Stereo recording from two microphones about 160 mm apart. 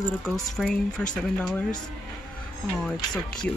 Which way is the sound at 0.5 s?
5° left (ahead or behind).